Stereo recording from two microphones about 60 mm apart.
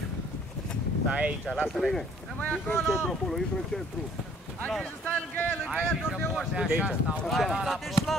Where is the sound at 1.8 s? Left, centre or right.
Centre.